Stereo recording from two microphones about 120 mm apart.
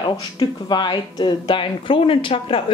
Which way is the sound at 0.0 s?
40° left (ahead or behind).